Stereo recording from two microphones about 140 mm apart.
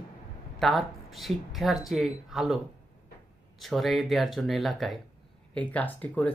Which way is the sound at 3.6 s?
Centre (ahead or behind).